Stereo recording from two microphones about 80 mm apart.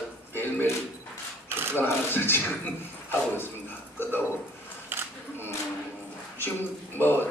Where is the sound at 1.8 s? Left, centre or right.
Left.